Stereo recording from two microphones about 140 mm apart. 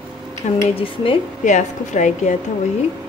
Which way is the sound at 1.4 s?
60° left (ahead or behind).